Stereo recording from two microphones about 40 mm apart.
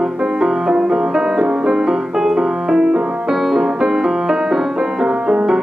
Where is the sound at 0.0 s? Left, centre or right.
Centre.